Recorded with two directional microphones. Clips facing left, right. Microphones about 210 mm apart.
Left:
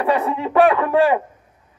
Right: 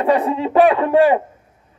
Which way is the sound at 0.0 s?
30° right (ahead or behind).